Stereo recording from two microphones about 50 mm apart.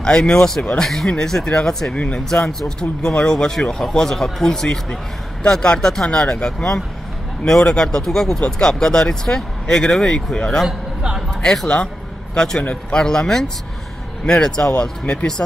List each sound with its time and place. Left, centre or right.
0.0 s speech: centre
2.0 s speech: left
2.2 s speech: centre
11.0 s music: centre
11.2 s speech: centre